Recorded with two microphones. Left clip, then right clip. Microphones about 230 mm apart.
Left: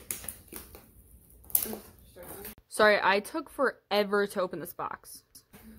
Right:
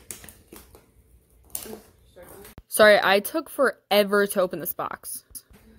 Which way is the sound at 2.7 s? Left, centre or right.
Centre.